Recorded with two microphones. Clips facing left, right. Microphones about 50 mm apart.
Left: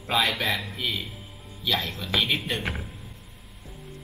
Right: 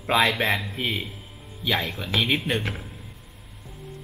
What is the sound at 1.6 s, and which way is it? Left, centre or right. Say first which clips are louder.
Speech: right 2 dB; centre.